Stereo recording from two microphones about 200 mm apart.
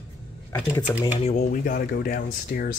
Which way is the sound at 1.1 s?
35° left (ahead or behind).